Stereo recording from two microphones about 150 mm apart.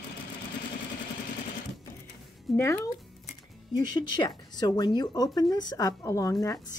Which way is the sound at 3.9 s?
30° left (ahead or behind).